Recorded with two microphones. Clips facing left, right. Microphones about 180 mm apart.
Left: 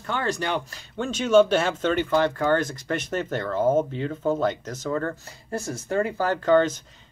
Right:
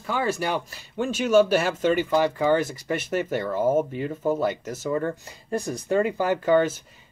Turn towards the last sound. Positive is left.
turn(degrees=-10)  # may be behind; listen again after turning